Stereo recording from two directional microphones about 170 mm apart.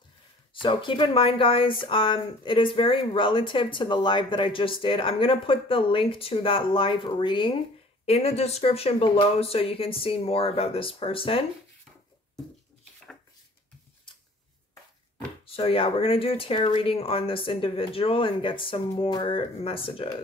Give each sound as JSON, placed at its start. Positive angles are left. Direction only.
{"t": 0.6, "sound": "speech", "side_deg": 30}
{"t": 15.4, "sound": "speech", "side_deg": 35}